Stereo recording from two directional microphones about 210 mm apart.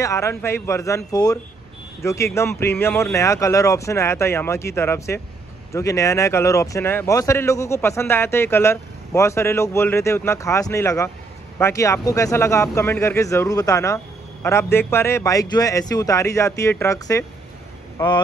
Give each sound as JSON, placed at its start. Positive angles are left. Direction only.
{"t": 0.0, "sound": "speech", "side_deg": 15}